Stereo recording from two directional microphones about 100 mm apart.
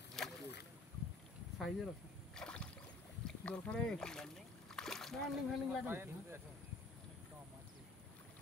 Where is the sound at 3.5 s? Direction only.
10° left (ahead or behind).